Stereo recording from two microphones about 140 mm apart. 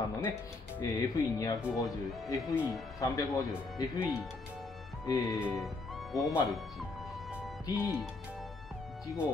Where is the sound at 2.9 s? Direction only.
25° left (ahead or behind).